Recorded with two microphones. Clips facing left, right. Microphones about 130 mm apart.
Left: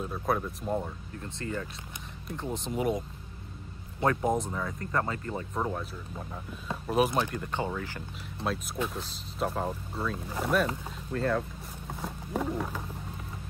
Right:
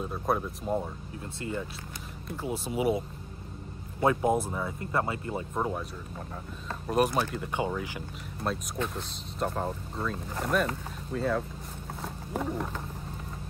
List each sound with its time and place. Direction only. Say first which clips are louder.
0.0 s speech: right 1 dB; centre (ahead or behind)
1.2 s speech: right 1 dB; 15° right (ahead or behind)
2.3 s speech: right 1 dB; 5° right (ahead or behind)
4.2 s speech: right 2 dB; 5° right (ahead or behind)
8.7 s speech: even; 5° left (ahead or behind)